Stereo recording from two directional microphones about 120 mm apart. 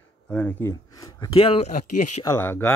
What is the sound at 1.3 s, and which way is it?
Speech, 50° left (ahead or behind).